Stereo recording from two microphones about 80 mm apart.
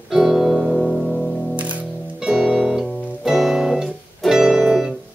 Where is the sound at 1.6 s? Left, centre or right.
Centre.